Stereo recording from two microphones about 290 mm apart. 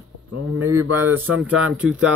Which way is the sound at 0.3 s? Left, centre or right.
Right.